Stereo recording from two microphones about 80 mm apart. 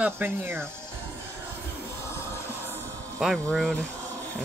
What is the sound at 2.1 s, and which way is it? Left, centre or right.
Music, left.